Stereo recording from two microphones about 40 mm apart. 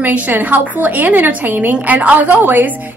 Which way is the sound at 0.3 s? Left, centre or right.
Right.